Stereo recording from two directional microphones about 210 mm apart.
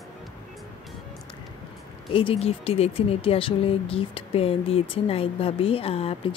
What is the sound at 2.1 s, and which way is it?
Speech, 25° left (ahead or behind).